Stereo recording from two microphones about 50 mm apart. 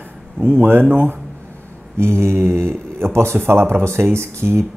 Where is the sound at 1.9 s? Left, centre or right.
Right.